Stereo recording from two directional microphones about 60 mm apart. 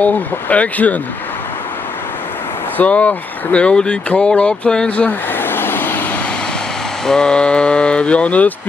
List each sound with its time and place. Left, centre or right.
0.0 s speech: left
2.8 s speech: left
5.3 s vehicle: left
7.1 s speech: centre